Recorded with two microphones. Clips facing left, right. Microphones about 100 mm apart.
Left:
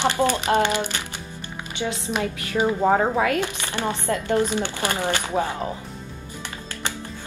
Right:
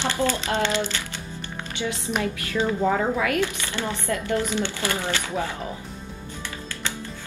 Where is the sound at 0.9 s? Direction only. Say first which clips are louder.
Left 1 dB; 20° left (ahead or behind).